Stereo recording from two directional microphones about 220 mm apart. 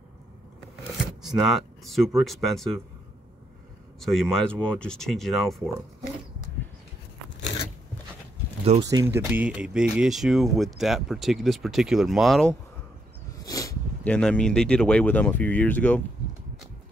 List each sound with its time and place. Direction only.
1.2 s speech: centre (ahead or behind)
4.0 s speech: centre (ahead or behind)
8.8 s speech: 15° right (ahead or behind)
13.3 s a sound: 15° left (ahead or behind)
14.0 s speech: 5° left (ahead or behind)